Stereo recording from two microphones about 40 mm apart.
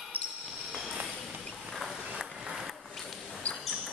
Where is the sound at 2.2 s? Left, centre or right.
Centre.